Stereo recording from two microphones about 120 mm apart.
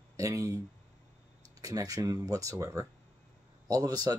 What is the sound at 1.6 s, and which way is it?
Speech, 30° right (ahead or behind).